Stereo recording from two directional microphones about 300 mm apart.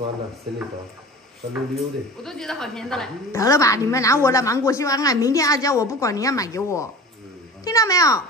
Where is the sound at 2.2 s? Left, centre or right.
Centre.